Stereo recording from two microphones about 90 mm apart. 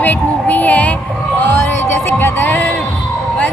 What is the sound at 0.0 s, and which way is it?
Music, 20° left (ahead or behind).